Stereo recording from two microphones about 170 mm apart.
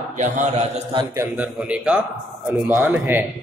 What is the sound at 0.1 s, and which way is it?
Speech, 45° right (ahead or behind).